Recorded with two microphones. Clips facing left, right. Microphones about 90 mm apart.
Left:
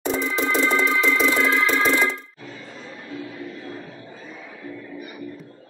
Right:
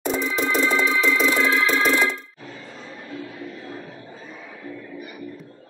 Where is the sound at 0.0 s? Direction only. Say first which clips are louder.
Even; 5° right (ahead or behind).